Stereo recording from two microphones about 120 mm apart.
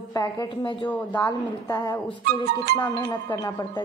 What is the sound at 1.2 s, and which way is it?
Speech, 25° left (ahead or behind).